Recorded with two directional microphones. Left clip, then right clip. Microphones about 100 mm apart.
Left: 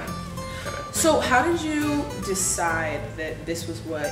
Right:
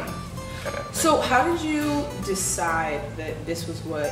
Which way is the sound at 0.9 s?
15° left (ahead or behind).